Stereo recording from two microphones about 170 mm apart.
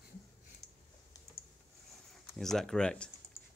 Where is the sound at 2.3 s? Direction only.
Centre (ahead or behind).